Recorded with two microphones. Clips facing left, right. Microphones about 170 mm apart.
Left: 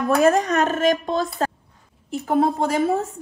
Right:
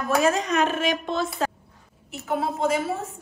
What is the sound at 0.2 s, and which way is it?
A woman's voice, 50° left (ahead or behind).